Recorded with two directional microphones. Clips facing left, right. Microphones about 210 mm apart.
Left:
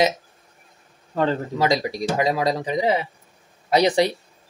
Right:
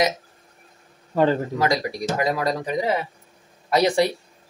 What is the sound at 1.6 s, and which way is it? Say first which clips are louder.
Speech: left 1 dB; 25° left (ahead or behind).